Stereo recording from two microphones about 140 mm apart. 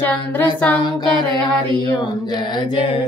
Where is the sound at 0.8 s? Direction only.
35° left (ahead or behind).